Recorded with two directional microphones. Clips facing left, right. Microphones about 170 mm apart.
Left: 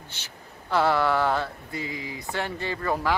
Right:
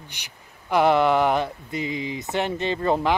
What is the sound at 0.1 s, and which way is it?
Speech, 15° right (ahead or behind).